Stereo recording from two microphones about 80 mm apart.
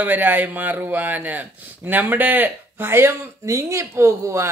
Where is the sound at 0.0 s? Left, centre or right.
Right.